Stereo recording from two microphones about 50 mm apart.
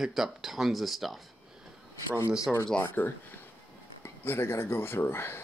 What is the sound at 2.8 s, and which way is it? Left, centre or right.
Speech, left.